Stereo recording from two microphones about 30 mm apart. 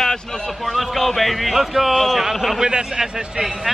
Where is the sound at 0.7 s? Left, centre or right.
Centre.